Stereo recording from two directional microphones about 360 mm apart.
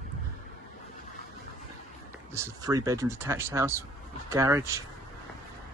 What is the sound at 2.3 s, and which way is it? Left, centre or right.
Speech, centre.